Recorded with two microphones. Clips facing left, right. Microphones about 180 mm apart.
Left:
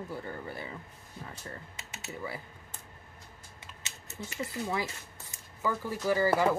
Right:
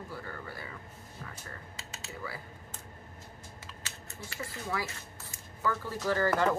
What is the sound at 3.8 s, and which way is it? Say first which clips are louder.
Speech: left 4 dB; 20° left (ahead or behind).